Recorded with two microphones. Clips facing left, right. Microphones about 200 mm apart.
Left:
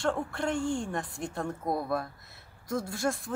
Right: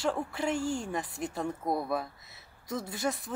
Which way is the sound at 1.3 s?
5° right (ahead or behind).